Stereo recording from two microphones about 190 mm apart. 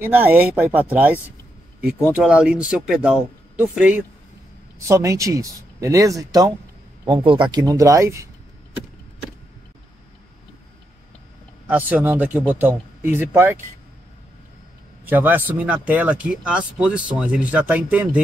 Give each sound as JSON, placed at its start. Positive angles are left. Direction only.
{"t": 0.0, "sound": "speech", "side_deg": -10}
{"t": 2.1, "sound": "speech", "side_deg": -5}
{"t": 11.6, "sound": "speech", "side_deg": -10}
{"t": 15.0, "sound": "speech", "side_deg": -10}